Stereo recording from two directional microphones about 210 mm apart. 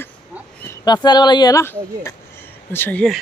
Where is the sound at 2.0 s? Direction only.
10° left (ahead or behind).